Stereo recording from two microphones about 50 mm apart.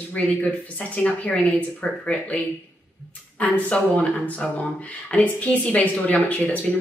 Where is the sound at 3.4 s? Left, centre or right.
Left.